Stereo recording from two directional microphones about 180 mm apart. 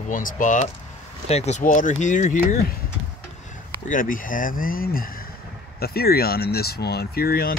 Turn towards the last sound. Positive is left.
turn(degrees=55)  # may be behind; listen again after turning